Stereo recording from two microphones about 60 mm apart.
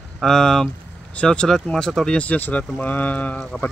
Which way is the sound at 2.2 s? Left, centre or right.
Left.